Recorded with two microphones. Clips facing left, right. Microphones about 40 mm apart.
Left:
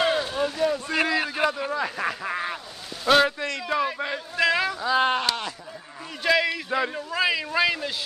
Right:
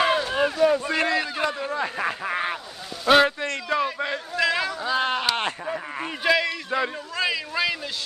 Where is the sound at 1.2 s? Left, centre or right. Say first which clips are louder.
Left 1 dB; centre.